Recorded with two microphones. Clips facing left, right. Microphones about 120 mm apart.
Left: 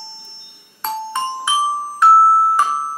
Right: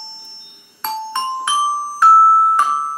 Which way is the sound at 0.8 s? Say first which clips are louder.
Even; 5° left (ahead or behind).